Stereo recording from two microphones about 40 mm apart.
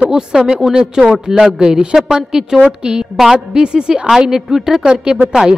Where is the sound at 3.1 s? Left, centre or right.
Centre.